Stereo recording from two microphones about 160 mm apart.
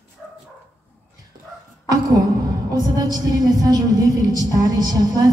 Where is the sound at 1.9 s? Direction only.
25° right (ahead or behind).